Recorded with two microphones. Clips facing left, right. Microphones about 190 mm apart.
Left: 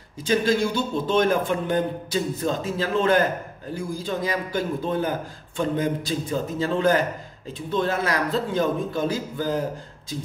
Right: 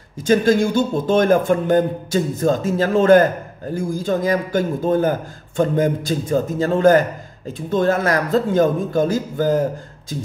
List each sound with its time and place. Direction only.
0.2 s a man's voice: 45° right (ahead or behind)